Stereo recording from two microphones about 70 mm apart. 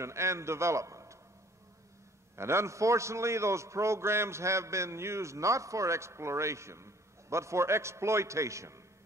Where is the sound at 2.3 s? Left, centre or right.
Right.